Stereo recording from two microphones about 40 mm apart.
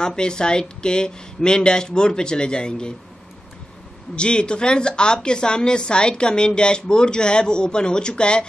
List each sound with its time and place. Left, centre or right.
0.0 s speech: centre
4.1 s speech: left